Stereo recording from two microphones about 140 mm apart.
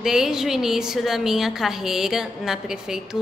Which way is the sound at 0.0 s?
5° right (ahead or behind).